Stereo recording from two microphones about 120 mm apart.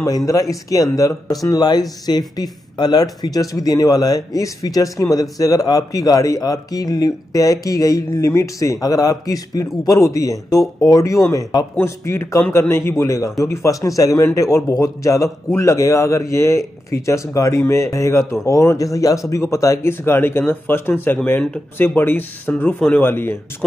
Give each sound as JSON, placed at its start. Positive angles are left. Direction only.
{"t": 0.3, "sound": "speech", "side_deg": 30}